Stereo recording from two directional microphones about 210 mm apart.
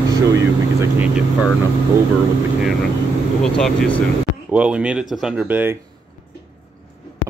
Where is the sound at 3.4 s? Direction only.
Centre (ahead or behind).